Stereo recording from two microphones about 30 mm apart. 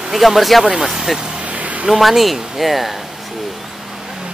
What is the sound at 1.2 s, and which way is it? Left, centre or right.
Vehicle, right.